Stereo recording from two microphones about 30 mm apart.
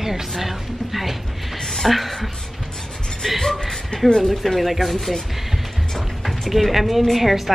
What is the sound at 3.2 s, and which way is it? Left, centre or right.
Speech, centre.